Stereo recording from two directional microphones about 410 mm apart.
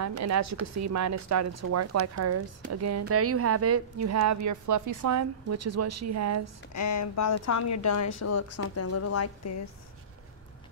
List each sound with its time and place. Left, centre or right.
0.0 s speech: right
6.7 s speech: left